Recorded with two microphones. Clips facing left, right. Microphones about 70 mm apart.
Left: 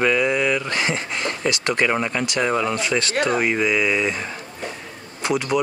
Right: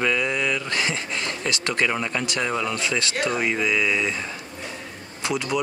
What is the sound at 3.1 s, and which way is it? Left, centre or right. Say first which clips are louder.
Speech: left 6 dB; left.